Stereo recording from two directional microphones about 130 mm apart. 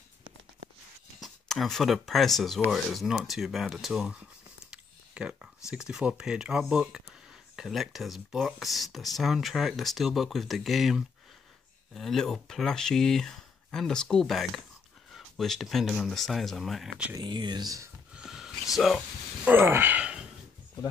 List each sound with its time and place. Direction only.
1.2 s speech: centre (ahead or behind)
4.6 s a sound: 5° right (ahead or behind)
5.7 s speech: 5° right (ahead or behind)
17.2 s speech: 35° right (ahead or behind)
18.1 s a sound: 5° right (ahead or behind)
19.4 s speech: 15° right (ahead or behind)